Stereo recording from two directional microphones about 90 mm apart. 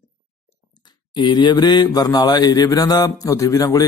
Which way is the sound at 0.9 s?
55° left (ahead or behind).